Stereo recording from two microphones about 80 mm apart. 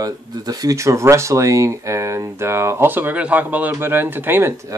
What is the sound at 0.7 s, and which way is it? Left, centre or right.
Speech, right.